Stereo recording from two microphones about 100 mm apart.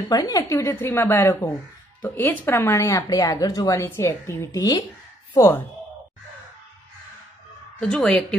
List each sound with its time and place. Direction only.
0.1 s a woman's voice: 40° left (ahead or behind)
3.8 s a woman's voice: 25° left (ahead or behind)
7.8 s speech: 10° left (ahead or behind)